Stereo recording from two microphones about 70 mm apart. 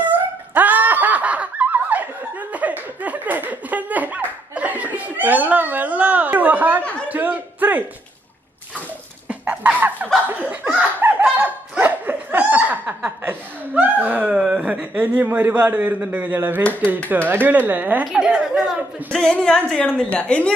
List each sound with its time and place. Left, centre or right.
0.6 s snicker: right
2.5 s chuckle: right
7.1 s a sound: right
9.3 s chicken: right
10.4 s a man's voice: right
11.0 s a sound: right
14.4 s a man's voice: centre
18.1 s a woman's voice: centre
19.1 s a woman's voice: centre